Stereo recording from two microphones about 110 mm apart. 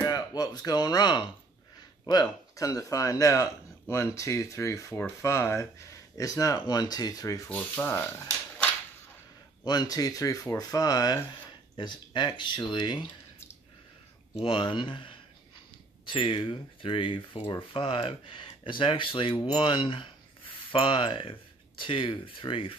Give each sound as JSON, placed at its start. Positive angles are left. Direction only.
{"t": 0.0, "sound": "speech", "side_deg": 35}
{"t": 2.5, "sound": "speech", "side_deg": 30}
{"t": 7.4, "sound": "speech", "side_deg": 15}
{"t": 9.7, "sound": "speech", "side_deg": 35}
{"t": 11.7, "sound": "speech", "side_deg": 45}
{"t": 14.4, "sound": "speech", "side_deg": 50}